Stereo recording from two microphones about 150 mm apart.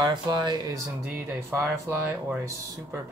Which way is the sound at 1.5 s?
15° right (ahead or behind).